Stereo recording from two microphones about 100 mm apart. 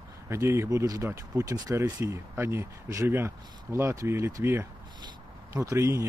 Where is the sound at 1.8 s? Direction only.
25° right (ahead or behind).